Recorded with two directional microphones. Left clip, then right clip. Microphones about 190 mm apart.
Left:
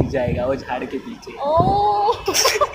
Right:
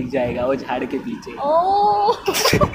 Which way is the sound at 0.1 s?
15° right (ahead or behind).